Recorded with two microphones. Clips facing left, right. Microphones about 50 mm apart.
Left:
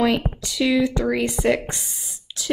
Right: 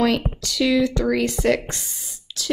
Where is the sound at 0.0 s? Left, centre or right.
Centre.